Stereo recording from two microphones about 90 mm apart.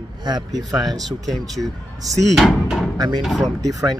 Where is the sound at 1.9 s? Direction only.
40° right (ahead or behind).